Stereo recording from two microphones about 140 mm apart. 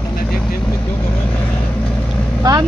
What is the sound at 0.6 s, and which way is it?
Vehicle, 15° left (ahead or behind).